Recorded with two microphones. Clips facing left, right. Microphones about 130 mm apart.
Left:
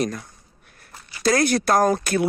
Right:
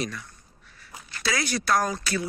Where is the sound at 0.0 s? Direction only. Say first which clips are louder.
Left 7 dB; 45° left (ahead or behind).